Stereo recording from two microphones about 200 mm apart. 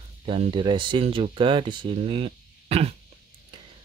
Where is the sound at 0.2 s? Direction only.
25° right (ahead or behind).